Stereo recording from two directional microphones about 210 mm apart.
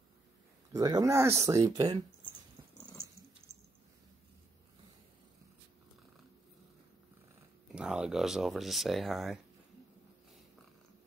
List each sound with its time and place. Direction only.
0.7 s speech: 15° right (ahead or behind)
3.4 s a sound: 25° right (ahead or behind)
7.6 s speech: 5° right (ahead or behind)